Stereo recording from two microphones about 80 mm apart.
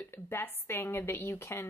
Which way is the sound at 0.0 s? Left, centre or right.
Left.